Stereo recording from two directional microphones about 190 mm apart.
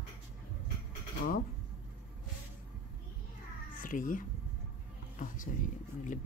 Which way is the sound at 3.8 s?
45° left (ahead or behind).